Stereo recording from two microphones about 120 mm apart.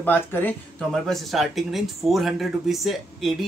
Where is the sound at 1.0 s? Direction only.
Centre (ahead or behind).